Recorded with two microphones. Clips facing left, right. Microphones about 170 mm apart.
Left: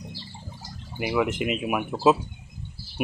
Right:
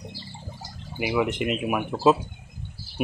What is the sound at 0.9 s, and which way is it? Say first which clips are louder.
Speech: even; 15° right (ahead or behind).